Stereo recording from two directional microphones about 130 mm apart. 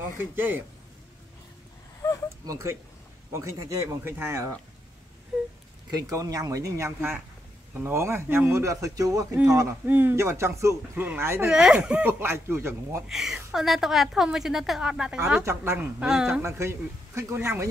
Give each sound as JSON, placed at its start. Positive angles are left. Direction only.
{"t": 0.2, "sound": "speech", "side_deg": -15}
{"t": 2.0, "sound": "a sound", "side_deg": 25}
{"t": 2.4, "sound": "speech", "side_deg": -25}
{"t": 5.9, "sound": "speech", "side_deg": -30}
{"t": 9.8, "sound": "speech", "side_deg": -15}
{"t": 11.4, "sound": "speech", "side_deg": -5}
{"t": 12.1, "sound": "speech", "side_deg": -20}
{"t": 13.1, "sound": "a woman's voice", "side_deg": -5}
{"t": 15.4, "sound": "speech", "side_deg": -20}
{"t": 16.1, "sound": "a woman's voice", "side_deg": -5}
{"t": 16.4, "sound": "speech", "side_deg": -20}